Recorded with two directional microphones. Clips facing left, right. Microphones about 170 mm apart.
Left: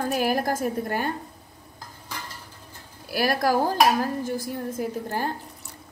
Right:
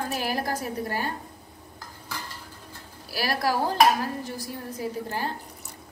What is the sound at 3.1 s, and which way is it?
A woman's voice, 50° left (ahead or behind).